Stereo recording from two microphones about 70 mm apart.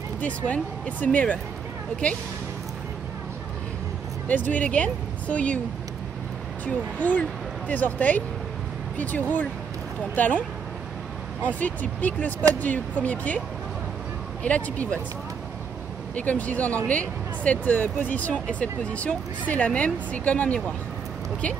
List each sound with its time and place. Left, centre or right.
0.5 s speech: left
4.3 s speech: left
6.6 s speech: left
11.4 s speech: left
14.4 s speech: centre
16.2 s speech: left